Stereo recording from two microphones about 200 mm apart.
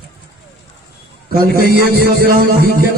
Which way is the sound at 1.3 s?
50° right (ahead or behind).